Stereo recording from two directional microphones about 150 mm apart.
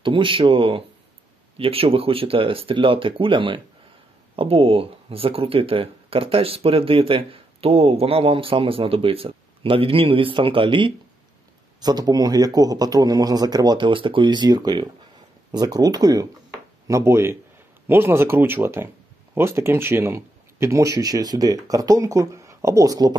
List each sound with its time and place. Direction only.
0.0 s speech: 35° right (ahead or behind)